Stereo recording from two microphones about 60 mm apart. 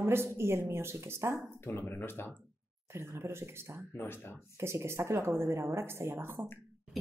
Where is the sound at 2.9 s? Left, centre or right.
Right.